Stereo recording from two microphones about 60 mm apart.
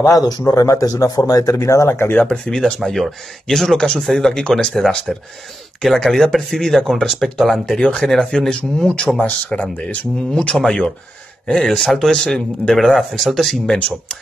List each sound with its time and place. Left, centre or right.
0.0 s speech: left
0.5 s speech: left
2.5 s a man's voice: centre
9.2 s a man's voice: left; by 13.7 s centre